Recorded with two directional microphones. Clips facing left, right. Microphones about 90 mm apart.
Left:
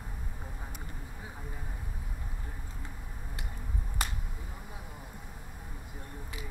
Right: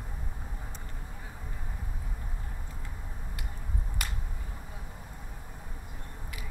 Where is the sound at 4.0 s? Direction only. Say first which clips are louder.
Left 4 dB; 25° left (ahead or behind).